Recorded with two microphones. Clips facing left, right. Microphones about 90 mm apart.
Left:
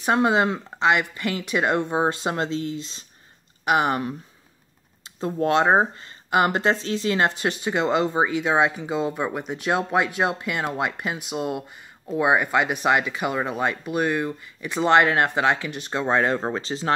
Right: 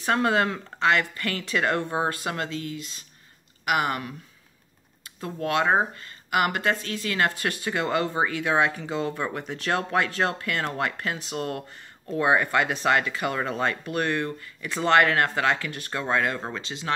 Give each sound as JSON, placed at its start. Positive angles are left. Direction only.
{"t": 0.0, "sound": "speech", "side_deg": 20}